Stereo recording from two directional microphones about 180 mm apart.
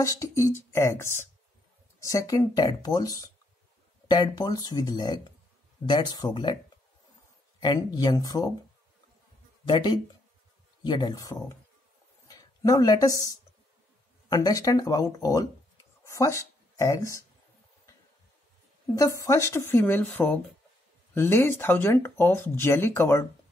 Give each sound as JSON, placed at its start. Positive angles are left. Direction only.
{"t": 0.0, "sound": "speech", "side_deg": 20}
{"t": 7.6, "sound": "speech", "side_deg": 20}
{"t": 10.8, "sound": "speech", "side_deg": 25}
{"t": 12.3, "sound": "a sound", "side_deg": 20}
{"t": 14.3, "sound": "speech", "side_deg": 20}
{"t": 18.9, "sound": "speech", "side_deg": 15}